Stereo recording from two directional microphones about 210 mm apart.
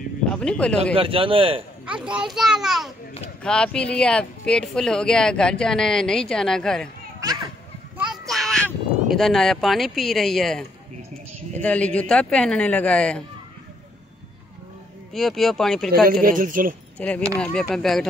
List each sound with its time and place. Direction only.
0.3 s speech: 5° left (ahead or behind)
0.9 s speech: 25° right (ahead or behind)
1.9 s speech: 5° right (ahead or behind)
7.2 s a child's voice: 15° right (ahead or behind)
8.0 s a sound: centre (ahead or behind)
11.5 s speech: 5° left (ahead or behind)
15.1 s speech: centre (ahead or behind)
16.1 s speech: 40° right (ahead or behind)
17.0 s speech: 5° left (ahead or behind)